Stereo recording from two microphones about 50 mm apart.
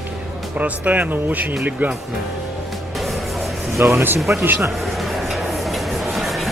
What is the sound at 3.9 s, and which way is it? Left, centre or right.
Speech, right.